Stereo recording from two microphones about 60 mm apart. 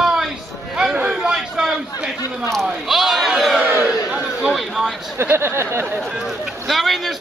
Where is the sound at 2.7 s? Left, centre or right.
Centre.